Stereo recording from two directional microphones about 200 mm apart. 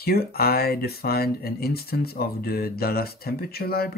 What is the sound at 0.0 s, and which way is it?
Speech, 50° left (ahead or behind).